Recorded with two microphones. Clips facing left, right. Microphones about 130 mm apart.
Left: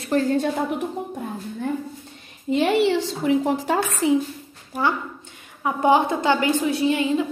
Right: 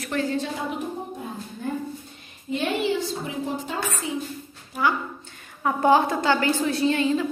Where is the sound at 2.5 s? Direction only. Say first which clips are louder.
Left 6 dB; 90° left.